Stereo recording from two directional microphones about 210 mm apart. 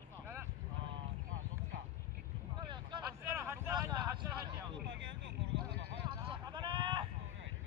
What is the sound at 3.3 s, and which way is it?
Vehicle, 10° right (ahead or behind).